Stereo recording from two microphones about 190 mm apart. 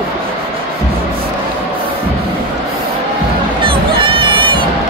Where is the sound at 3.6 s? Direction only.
25° right (ahead or behind).